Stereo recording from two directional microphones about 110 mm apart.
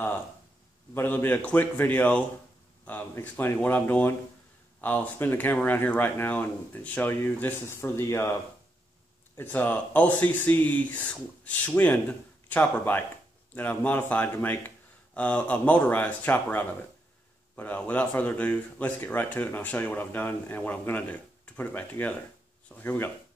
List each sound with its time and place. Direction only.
0.9 s speech: 15° left (ahead or behind)
9.4 s speech: 15° left (ahead or behind)
22.7 s a sound: 20° left (ahead or behind)